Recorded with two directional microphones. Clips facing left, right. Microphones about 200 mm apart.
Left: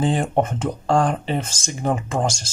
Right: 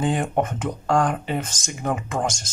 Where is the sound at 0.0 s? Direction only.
30° left (ahead or behind).